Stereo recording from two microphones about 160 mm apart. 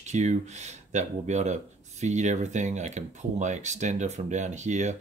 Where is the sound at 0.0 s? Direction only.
45° right (ahead or behind).